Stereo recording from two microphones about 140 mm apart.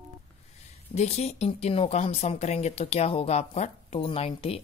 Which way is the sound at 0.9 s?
50° left (ahead or behind).